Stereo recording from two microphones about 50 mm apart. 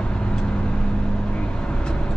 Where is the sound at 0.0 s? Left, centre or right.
Centre.